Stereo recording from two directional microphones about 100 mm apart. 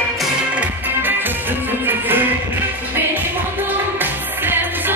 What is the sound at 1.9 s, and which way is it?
Music, 20° right (ahead or behind).